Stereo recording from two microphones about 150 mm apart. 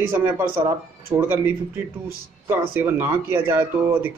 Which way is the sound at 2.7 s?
15° right (ahead or behind).